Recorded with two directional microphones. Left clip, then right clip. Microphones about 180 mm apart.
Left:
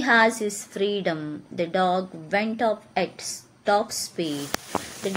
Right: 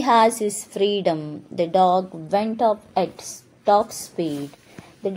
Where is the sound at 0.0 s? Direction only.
20° right (ahead or behind).